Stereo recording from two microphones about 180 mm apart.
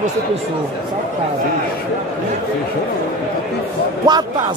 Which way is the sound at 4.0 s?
25° right (ahead or behind).